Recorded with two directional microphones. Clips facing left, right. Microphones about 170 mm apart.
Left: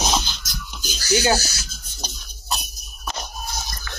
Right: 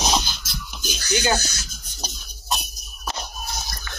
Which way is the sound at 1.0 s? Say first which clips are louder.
Left 3 dB; 5° left (ahead or behind).